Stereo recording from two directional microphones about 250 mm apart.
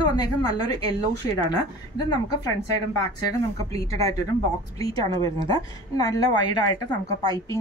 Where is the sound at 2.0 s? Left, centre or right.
Centre.